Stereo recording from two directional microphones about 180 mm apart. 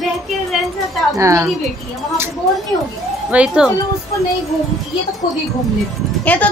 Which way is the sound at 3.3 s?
5° right (ahead or behind).